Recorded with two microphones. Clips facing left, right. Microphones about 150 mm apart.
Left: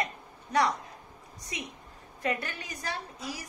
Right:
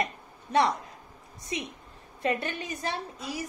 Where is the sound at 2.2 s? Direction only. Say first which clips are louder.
Right 3 dB; 25° right (ahead or behind).